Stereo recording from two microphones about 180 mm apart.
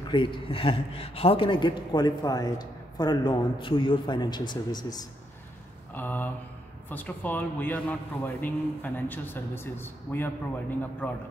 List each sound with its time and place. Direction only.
0.1 s speech: 25° left (ahead or behind)
5.9 s a man's voice: 10° left (ahead or behind)